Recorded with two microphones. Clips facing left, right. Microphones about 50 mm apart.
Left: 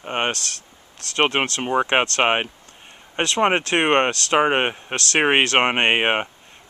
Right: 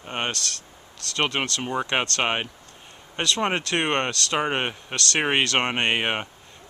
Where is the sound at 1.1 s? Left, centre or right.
Left.